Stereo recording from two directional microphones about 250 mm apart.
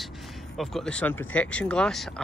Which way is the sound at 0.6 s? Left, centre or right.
Centre.